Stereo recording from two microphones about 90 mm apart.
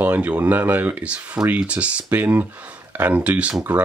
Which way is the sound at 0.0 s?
20° right (ahead or behind).